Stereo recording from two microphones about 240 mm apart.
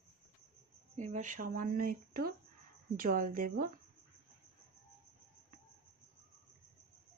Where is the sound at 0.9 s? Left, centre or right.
Right.